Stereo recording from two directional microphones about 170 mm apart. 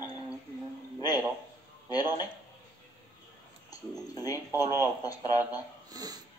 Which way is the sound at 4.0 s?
20° left (ahead or behind).